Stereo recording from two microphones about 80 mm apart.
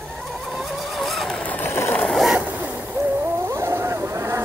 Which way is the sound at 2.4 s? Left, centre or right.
Centre.